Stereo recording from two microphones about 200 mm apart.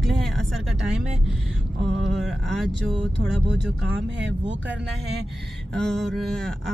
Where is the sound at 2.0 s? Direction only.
Centre (ahead or behind).